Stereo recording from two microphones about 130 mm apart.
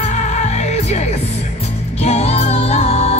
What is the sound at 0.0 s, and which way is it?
Music, 60° left (ahead or behind).